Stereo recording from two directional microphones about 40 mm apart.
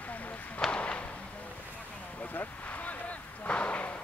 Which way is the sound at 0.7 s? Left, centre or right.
Left.